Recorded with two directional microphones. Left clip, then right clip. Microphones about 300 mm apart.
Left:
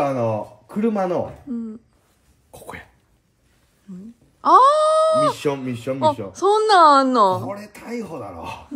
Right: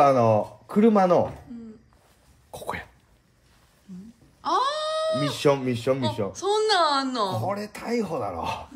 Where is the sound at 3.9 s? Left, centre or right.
Centre.